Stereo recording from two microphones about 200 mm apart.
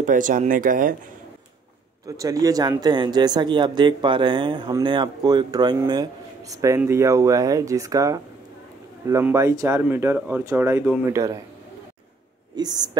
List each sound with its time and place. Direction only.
0.0 s speech: 40° right (ahead or behind)
2.0 s speech: 15° right (ahead or behind)
12.5 s speech: 20° right (ahead or behind)